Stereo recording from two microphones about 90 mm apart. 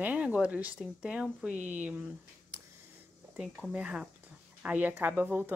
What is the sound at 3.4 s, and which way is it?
Speech, 10° right (ahead or behind).